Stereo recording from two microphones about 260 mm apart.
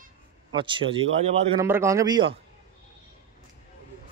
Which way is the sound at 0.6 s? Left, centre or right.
Centre.